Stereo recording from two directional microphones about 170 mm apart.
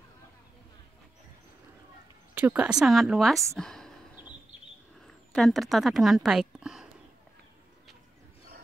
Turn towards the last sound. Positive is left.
turn(degrees=-5)  # may be behind; listen again after turning